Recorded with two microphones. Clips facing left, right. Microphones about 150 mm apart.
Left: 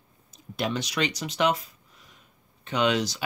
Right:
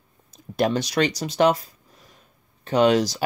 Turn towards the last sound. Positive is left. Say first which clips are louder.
# right 7 dB
turn(degrees=-40)  # may be behind; listen again after turning